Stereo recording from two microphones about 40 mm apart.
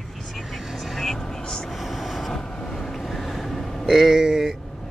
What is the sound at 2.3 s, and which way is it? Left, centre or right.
Vehicle, centre.